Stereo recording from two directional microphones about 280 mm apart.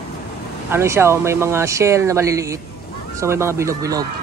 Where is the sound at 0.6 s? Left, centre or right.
Centre.